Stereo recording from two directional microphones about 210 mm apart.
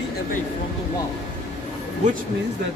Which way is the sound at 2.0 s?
35° right (ahead or behind).